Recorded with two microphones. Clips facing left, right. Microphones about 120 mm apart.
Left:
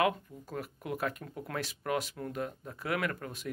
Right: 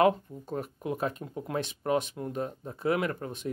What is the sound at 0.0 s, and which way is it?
Speech, 25° right (ahead or behind).